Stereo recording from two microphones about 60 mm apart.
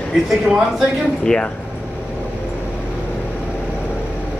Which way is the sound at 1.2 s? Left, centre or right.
Centre.